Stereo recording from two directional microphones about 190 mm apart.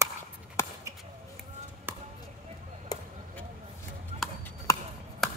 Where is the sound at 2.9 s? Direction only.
20° left (ahead or behind).